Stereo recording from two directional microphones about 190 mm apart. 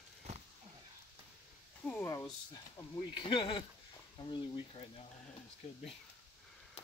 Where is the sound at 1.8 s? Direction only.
10° left (ahead or behind); by 5.0 s 30° left (ahead or behind).